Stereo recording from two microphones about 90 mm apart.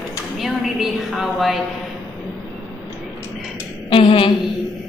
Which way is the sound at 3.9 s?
75° left (ahead or behind).